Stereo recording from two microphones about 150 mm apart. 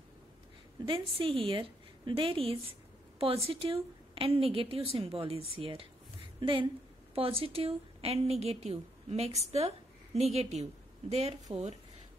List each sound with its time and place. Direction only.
0.8 s a woman's voice: 35° right (ahead or behind)